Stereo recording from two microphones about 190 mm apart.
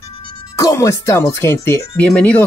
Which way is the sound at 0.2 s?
25° left (ahead or behind).